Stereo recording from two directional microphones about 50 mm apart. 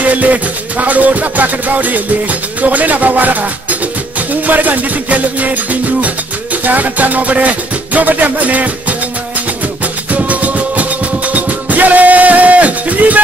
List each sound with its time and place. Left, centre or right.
0.0 s music: right
4.5 s music: right
10.1 s music: right